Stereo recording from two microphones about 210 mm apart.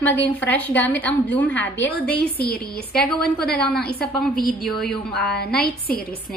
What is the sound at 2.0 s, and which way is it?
A woman's voice, 50° left (ahead or behind).